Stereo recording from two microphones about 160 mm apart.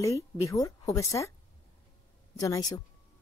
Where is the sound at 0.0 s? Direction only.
20° left (ahead or behind).